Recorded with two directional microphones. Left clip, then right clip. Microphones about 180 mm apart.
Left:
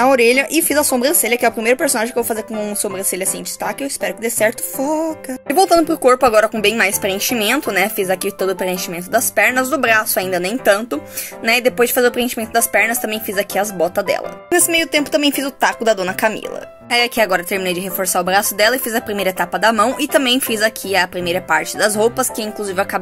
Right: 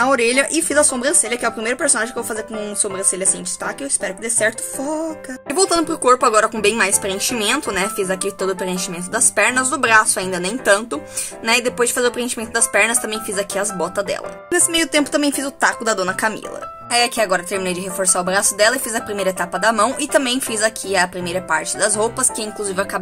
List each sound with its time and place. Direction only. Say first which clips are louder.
0.0 s a woman's voice: left 3 dB; 10° left (ahead or behind)